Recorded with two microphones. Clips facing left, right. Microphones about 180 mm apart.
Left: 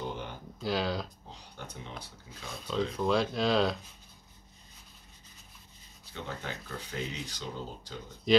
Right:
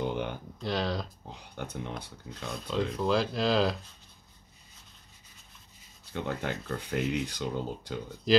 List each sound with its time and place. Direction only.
0.6 s speech: centre (ahead or behind)
1.3 s speech: 55° right (ahead or behind)
2.5 s speech: centre (ahead or behind)
6.1 s speech: 55° right (ahead or behind)
8.3 s speech: centre (ahead or behind)